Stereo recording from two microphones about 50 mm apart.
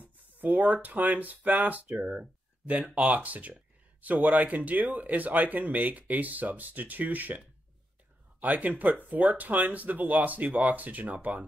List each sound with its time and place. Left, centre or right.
0.0 s speech: right